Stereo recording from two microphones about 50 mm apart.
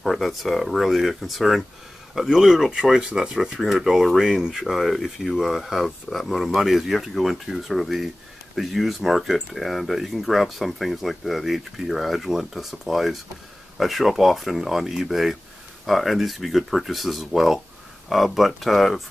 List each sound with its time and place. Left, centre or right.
0.0 s speech: centre